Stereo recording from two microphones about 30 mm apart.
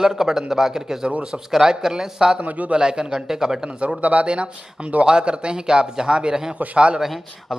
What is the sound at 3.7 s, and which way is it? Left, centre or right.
Speech, right.